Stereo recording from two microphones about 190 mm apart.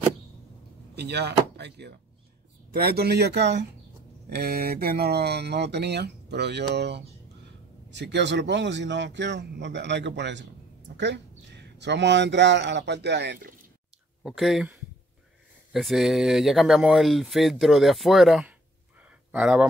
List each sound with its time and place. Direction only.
0.9 s speech: 60° right (ahead or behind)
14.2 s speech: centre (ahead or behind)
19.0 s a sound: 5° right (ahead or behind)